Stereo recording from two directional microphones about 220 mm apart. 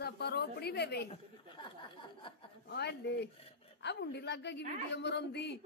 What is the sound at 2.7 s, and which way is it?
A woman's voice, 50° left (ahead or behind).